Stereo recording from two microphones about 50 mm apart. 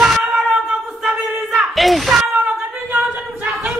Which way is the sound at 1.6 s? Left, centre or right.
Centre.